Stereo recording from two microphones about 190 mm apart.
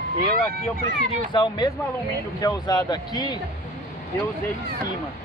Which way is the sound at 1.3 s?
20° left (ahead or behind).